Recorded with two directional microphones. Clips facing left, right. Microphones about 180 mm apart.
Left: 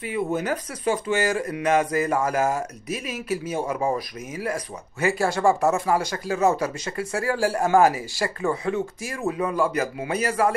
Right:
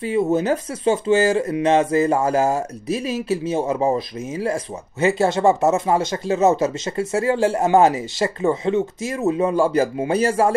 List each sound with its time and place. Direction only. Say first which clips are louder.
0.0 s speech: right 7 dB; 25° right (ahead or behind)